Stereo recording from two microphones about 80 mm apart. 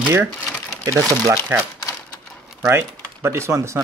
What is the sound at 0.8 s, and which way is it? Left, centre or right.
Speech, right.